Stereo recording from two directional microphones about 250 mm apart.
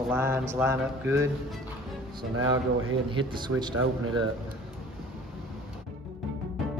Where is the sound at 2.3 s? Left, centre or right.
Right.